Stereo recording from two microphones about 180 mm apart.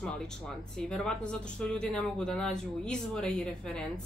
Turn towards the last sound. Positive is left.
turn(degrees=5)  # may be behind; listen again after turning